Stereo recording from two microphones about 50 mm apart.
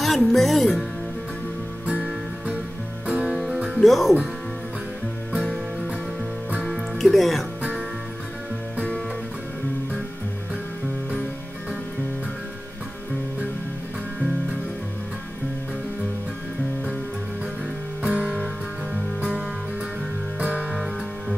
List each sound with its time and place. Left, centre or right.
0.0 s speech: centre
3.1 s music: right
3.8 s speech: centre
6.7 s music: centre
18.0 s music: right
20.3 s music: right
20.7 s music: centre